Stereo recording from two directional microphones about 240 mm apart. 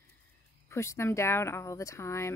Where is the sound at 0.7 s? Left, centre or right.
Centre.